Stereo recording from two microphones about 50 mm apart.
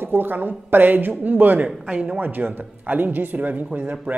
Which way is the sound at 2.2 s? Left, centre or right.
Right.